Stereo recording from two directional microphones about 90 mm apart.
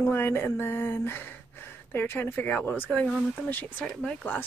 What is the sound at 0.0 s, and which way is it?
Speech, 25° left (ahead or behind).